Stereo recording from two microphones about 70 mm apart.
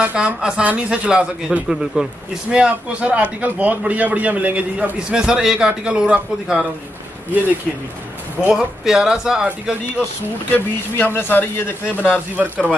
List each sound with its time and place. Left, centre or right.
0.0 s a man's voice: centre
1.7 s speech: centre
2.5 s a man's voice: centre
8.5 s a man's voice: centre
10.5 s a man's voice: left
12.4 s a man's voice: centre